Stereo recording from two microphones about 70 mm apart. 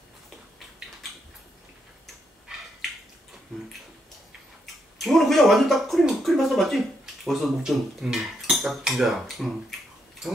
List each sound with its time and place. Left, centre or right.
4.9 s speech: centre